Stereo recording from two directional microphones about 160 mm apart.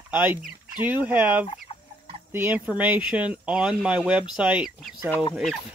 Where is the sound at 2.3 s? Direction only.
10° right (ahead or behind).